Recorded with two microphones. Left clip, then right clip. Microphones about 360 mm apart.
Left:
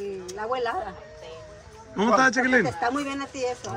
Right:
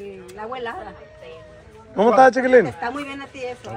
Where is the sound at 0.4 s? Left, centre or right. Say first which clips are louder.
Left 2 dB; left.